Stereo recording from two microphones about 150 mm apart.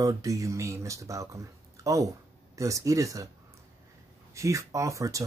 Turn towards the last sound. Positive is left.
turn(degrees=-20)  # may be behind; listen again after turning